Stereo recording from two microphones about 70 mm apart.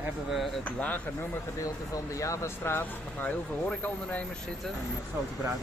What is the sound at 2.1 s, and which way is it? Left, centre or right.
Speech, left.